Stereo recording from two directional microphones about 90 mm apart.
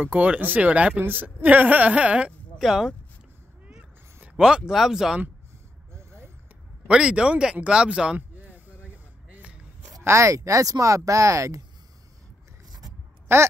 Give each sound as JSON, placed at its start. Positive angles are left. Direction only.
{"t": 0.0, "sound": "speech", "side_deg": -15}
{"t": 2.6, "sound": "speech", "side_deg": -5}
{"t": 3.6, "sound": "cat", "side_deg": -10}
{"t": 5.9, "sound": "vehicle", "side_deg": -30}
{"t": 6.9, "sound": "speech", "side_deg": -10}
{"t": 8.2, "sound": "a sound", "side_deg": -20}
{"t": 10.0, "sound": "speech", "side_deg": -35}
{"t": 13.3, "sound": "speech", "side_deg": -30}